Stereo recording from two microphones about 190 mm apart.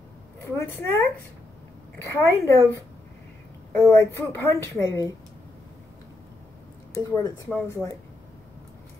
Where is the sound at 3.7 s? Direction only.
10° left (ahead or behind).